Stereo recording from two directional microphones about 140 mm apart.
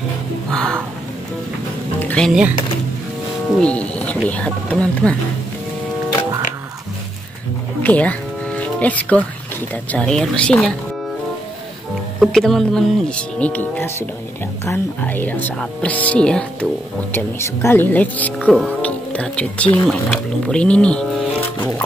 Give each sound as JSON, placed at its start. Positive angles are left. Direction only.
{"t": 0.5, "sound": "music", "side_deg": 5}
{"t": 2.0, "sound": "music", "side_deg": 10}
{"t": 3.5, "sound": "speech", "side_deg": 10}
{"t": 7.8, "sound": "music", "side_deg": 10}
{"t": 9.8, "sound": "speech", "side_deg": 5}
{"t": 12.2, "sound": "speech", "side_deg": 0}